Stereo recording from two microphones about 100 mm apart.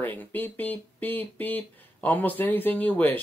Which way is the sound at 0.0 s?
20° left (ahead or behind).